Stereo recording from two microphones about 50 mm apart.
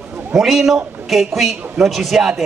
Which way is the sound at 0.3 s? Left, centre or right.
Centre.